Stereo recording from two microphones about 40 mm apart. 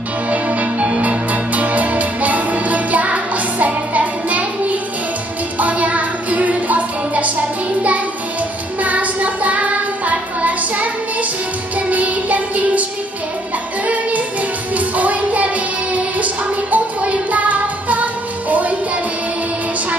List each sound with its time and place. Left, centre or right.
0.3 s music: right
5.6 s music: right
8.8 s child singing: right
11.9 s music: right
14.8 s music: right